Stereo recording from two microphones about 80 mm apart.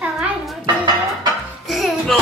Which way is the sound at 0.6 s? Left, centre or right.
Right.